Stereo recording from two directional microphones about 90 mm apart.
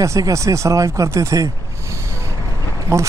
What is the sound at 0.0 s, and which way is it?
A man's voice, 35° right (ahead or behind).